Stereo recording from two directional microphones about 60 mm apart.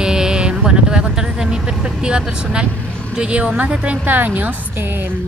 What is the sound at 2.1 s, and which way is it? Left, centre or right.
Speech, centre.